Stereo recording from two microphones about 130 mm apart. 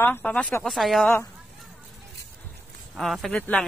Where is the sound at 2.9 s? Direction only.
Centre (ahead or behind).